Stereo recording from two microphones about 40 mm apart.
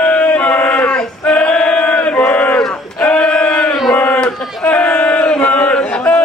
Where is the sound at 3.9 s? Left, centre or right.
Left.